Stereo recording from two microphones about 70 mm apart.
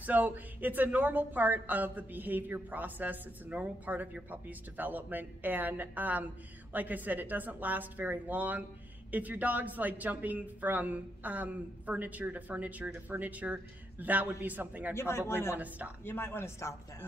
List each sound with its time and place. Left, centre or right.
0.0 s speech: right
15.0 s speech: left
15.5 s speech: right
16.0 s speech: left